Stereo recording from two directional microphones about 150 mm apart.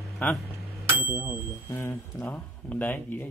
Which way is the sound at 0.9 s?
15° right (ahead or behind).